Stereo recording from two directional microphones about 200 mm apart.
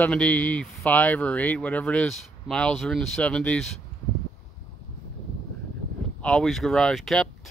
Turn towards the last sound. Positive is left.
turn(degrees=0)  # may be behind; listen again after turning